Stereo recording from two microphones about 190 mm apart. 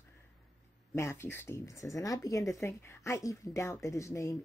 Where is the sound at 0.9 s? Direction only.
15° left (ahead or behind).